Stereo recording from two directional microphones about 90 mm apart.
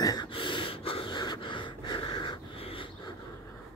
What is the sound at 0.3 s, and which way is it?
Gasp, 65° left (ahead or behind).